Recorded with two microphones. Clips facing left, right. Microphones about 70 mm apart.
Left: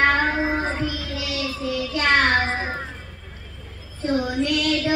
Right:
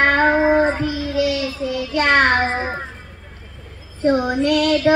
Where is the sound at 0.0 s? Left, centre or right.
Right.